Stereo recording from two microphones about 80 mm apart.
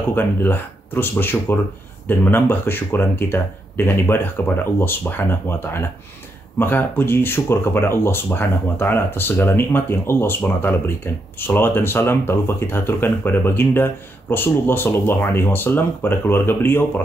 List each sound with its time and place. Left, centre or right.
0.1 s speech: left